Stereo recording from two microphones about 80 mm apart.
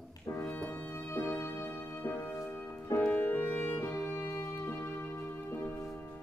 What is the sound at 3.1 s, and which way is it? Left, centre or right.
Music, left.